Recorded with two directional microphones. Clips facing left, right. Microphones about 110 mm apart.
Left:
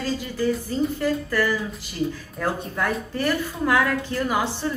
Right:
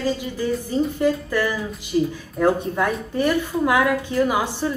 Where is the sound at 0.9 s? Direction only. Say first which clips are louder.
Right 3 dB; 20° right (ahead or behind).